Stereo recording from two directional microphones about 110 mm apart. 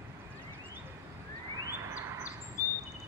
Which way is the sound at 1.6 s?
25° right (ahead or behind).